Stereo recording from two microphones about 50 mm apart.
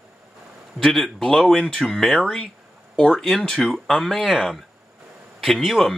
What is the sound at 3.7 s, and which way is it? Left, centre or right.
Speech, centre.